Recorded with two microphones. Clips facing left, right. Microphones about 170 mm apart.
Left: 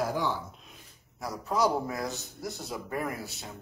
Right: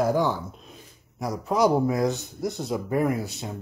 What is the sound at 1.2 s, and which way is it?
A man's voice, 20° right (ahead or behind).